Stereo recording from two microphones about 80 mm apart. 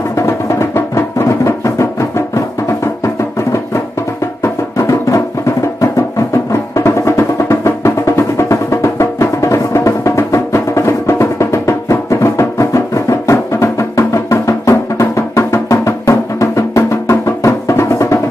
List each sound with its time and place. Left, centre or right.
0.1 s music: left